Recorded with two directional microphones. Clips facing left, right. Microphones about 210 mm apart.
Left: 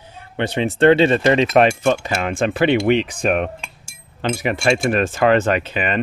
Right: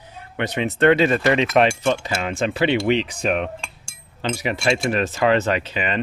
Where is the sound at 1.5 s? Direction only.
45° left (ahead or behind).